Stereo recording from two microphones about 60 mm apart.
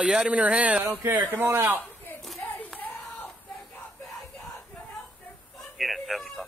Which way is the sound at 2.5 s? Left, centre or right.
Left.